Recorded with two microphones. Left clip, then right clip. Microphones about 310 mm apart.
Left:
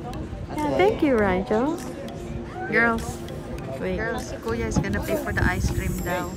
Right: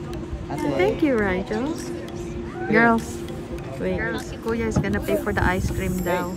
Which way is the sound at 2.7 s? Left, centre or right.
Centre.